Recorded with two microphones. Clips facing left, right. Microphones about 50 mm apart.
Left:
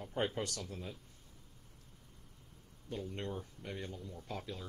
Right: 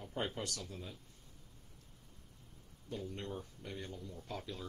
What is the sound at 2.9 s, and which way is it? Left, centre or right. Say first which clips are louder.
Speech: left 2 dB; left.